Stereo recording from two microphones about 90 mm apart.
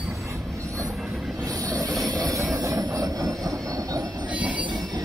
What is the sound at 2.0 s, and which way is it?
Train, 40° right (ahead or behind).